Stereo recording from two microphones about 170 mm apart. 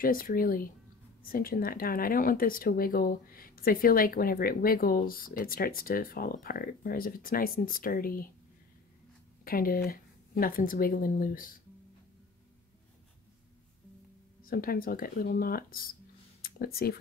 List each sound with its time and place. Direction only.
0.0 s speech: 60° left (ahead or behind)
9.4 s speech: 60° left (ahead or behind)
14.4 s speech: 60° left (ahead or behind)
16.3 s a sound: 60° left (ahead or behind)